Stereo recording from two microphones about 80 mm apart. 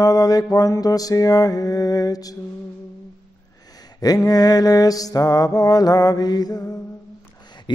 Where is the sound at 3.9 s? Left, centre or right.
Left.